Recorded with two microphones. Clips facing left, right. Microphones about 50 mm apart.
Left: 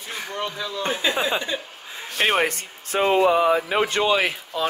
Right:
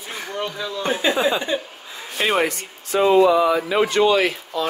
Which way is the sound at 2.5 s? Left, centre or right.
Left.